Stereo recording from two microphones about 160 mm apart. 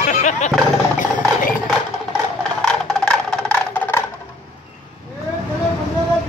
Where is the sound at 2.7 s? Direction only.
10° left (ahead or behind).